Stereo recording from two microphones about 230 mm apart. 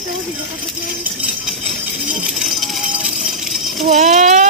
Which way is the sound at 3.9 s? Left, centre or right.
Right.